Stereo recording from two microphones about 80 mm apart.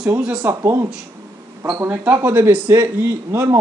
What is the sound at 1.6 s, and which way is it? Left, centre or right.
Speech, right.